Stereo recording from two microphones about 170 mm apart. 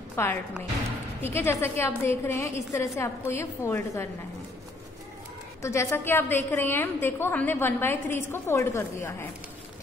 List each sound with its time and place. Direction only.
0.1 s a woman's voice: 15° left (ahead or behind)
5.6 s a woman's voice: 15° left (ahead or behind)